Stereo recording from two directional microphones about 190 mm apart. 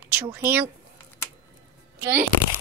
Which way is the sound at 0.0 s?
10° right (ahead or behind).